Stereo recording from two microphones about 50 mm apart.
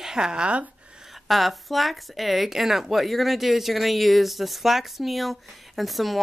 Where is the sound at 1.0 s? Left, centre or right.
Centre.